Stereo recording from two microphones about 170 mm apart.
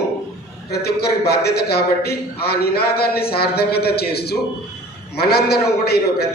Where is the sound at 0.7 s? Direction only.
70° left (ahead or behind).